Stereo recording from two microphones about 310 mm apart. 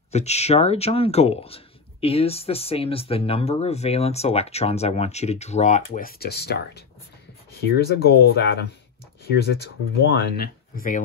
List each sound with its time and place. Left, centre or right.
0.1 s speech: left